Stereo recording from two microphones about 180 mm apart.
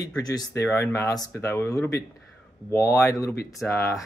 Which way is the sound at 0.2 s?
20° left (ahead or behind).